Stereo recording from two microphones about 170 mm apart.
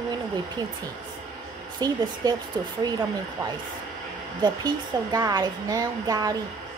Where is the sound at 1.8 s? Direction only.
25° right (ahead or behind).